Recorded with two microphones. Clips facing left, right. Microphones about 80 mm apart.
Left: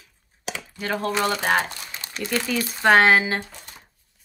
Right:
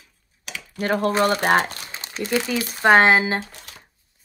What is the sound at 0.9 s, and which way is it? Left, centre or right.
Speech, right.